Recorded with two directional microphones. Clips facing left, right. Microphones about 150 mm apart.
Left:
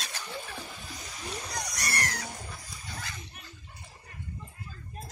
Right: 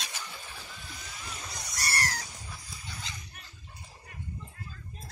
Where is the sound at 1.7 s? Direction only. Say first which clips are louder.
Right 3 dB; 30° right (ahead or behind).